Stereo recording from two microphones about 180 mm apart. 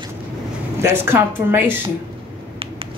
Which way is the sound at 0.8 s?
15° right (ahead or behind).